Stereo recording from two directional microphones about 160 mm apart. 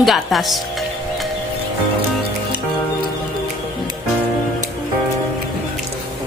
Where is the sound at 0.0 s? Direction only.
Centre (ahead or behind).